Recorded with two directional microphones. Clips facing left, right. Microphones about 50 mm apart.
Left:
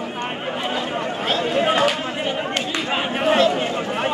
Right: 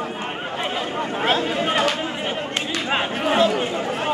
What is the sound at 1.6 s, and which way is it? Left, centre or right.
Chatter, centre.